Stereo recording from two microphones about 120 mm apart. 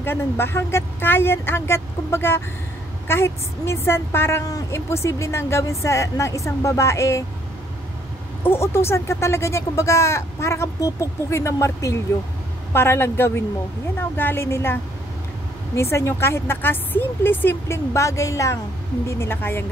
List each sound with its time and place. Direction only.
0.0 s a woman's voice: 20° left (ahead or behind)
8.5 s a woman's voice: 20° left (ahead or behind)